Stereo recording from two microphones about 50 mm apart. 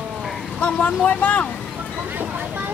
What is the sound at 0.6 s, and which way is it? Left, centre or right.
Speech, left.